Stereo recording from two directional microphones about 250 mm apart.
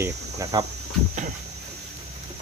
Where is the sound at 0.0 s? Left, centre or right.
Centre.